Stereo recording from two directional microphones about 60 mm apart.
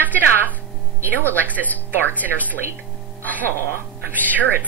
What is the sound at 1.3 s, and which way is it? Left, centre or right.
Speech, right.